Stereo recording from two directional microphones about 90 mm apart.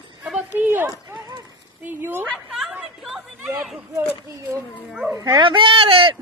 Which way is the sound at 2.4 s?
5° right (ahead or behind).